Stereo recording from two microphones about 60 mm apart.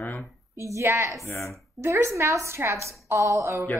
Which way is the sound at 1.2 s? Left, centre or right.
Left.